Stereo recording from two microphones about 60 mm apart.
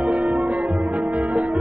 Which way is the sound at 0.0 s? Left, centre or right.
Centre.